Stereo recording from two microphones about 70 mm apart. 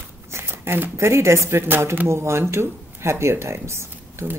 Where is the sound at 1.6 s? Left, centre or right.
Right.